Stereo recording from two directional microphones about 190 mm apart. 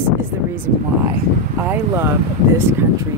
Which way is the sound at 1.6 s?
10° right (ahead or behind).